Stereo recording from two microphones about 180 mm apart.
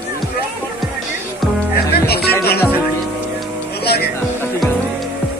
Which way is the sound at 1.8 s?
60° left (ahead or behind).